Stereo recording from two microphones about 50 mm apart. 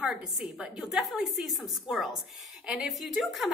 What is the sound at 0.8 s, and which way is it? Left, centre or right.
A woman's voice, centre.